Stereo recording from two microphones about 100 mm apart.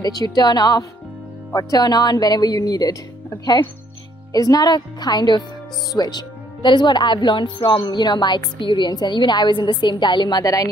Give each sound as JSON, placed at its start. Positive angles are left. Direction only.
{"t": 0.0, "sound": "speech", "side_deg": 40}